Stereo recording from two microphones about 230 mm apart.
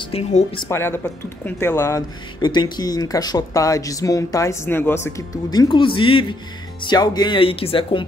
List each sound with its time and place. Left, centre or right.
0.0 s speech: left
0.7 s speech: centre